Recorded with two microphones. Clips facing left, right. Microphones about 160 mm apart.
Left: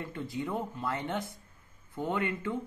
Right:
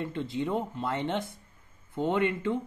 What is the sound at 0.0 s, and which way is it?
Speech, 25° right (ahead or behind).